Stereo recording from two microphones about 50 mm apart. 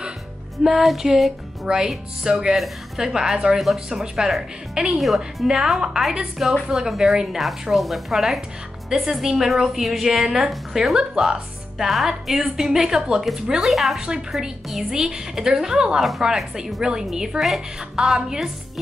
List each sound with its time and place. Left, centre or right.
0.7 s music: centre
1.7 s a woman's voice: centre
4.9 s music: centre
5.5 s a woman's voice: centre
6.9 s music: centre
8.9 s a woman's voice: centre
13.5 s music: centre
13.9 s a woman's voice: centre
14.3 s a woman's voice: centre